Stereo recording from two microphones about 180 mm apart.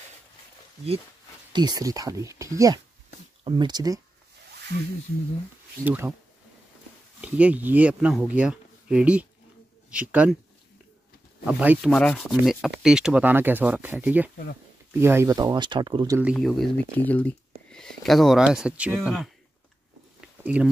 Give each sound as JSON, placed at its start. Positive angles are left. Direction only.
{"t": 1.5, "sound": "speech", "side_deg": -20}
{"t": 5.9, "sound": "rub", "side_deg": -10}
{"t": 7.2, "sound": "rub", "side_deg": -5}
{"t": 8.3, "sound": "speech", "side_deg": -5}
{"t": 9.8, "sound": "rub", "side_deg": -5}
{"t": 11.4, "sound": "rub", "side_deg": -10}
{"t": 11.9, "sound": "rub", "side_deg": 0}
{"t": 14.9, "sound": "speech", "side_deg": -15}
{"t": 16.2, "sound": "speech", "side_deg": 0}
{"t": 20.2, "sound": "a sound", "side_deg": -5}